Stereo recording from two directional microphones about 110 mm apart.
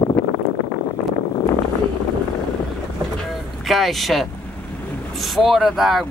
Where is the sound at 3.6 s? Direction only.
Centre (ahead or behind).